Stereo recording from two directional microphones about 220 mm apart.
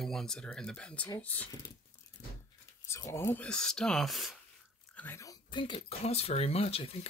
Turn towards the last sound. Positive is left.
turn(degrees=25)  # may be behind; listen again after turning